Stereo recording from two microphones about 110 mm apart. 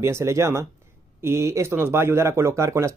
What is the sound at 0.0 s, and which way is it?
Speech, 25° right (ahead or behind).